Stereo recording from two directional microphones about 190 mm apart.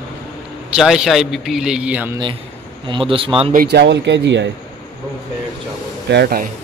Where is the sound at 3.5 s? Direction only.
60° right (ahead or behind).